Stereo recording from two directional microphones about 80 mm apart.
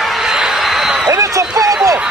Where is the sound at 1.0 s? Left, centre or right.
Right.